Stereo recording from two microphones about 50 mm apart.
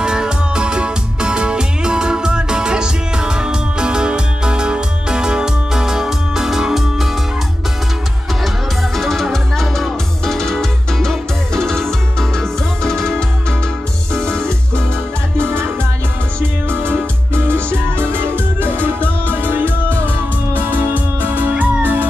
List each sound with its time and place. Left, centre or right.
0.0 s music: centre
8.9 s music: centre
15.3 s music: right
20.6 s music: right